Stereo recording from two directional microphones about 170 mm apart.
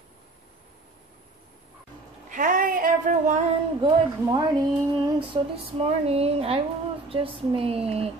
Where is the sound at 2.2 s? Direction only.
50° right (ahead or behind).